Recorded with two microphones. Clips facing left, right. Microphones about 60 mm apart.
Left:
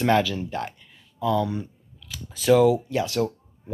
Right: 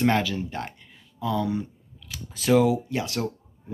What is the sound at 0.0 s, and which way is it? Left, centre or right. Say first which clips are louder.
Speech: left 2 dB; right.